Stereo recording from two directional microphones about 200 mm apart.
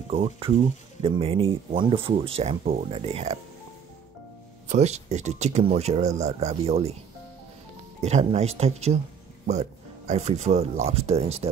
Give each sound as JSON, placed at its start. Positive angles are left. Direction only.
{"t": 0.1, "sound": "speech", "side_deg": -30}
{"t": 4.6, "sound": "speech", "side_deg": -35}
{"t": 8.0, "sound": "speech", "side_deg": -35}